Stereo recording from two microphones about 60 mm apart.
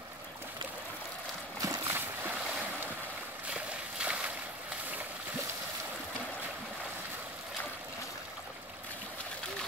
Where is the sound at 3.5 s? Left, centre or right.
Centre.